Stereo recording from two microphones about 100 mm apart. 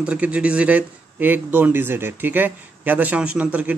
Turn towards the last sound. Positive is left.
turn(degrees=-15)  # may be behind; listen again after turning